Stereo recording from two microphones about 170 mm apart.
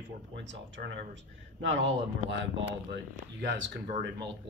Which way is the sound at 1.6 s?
90° right.